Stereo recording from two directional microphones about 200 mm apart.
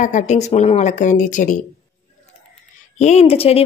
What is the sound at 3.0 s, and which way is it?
Speech, 35° left (ahead or behind).